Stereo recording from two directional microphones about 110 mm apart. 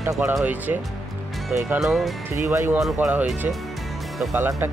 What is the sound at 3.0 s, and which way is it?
Speech, 15° right (ahead or behind).